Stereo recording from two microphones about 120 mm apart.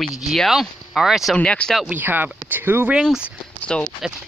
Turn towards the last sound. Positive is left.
turn(degrees=10)  # may be behind; listen again after turning